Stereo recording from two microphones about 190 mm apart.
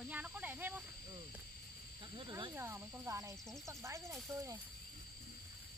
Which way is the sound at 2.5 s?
10° right (ahead or behind).